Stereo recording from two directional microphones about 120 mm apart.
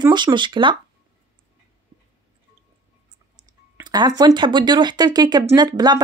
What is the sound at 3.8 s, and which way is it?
Speech, 35° right (ahead or behind).